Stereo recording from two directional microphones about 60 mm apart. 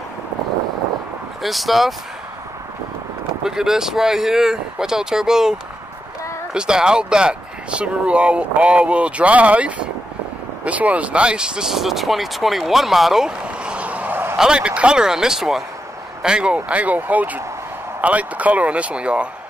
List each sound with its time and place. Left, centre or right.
1.4 s speech: centre
3.4 s speech: centre